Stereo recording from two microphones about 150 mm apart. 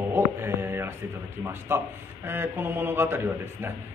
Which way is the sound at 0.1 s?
15° right (ahead or behind).